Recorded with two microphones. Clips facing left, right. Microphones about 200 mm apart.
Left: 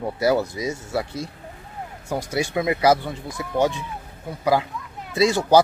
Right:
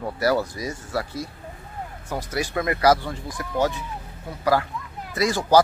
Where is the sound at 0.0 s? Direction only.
20° left (ahead or behind).